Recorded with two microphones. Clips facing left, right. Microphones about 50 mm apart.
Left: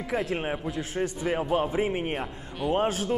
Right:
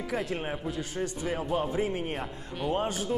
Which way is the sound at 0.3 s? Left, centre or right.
Left.